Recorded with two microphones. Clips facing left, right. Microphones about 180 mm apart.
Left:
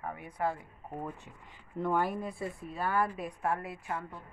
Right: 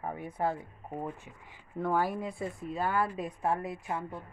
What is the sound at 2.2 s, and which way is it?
A woman's voice, 20° right (ahead or behind).